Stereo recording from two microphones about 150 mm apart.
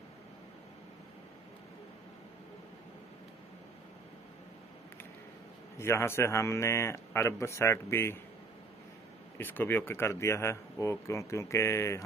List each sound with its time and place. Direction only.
5.8 s speech: 15° left (ahead or behind)
9.4 s speech: 15° left (ahead or behind)